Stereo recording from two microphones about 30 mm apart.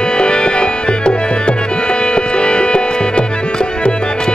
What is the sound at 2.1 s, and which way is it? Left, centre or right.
Music, left.